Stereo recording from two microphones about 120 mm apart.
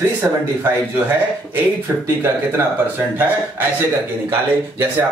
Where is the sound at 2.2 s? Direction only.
15° right (ahead or behind).